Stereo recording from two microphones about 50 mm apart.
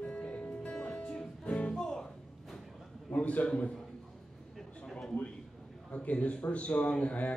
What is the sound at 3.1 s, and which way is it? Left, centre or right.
Speech, left.